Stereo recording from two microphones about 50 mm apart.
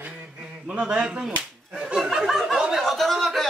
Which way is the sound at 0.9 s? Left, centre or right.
Right.